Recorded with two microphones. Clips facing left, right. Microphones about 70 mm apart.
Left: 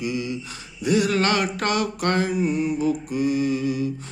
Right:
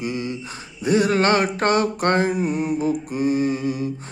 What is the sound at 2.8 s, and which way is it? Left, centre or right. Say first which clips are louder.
Mantra: right 1 dB; right.